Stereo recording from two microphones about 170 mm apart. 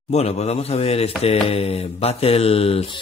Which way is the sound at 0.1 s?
40° left (ahead or behind).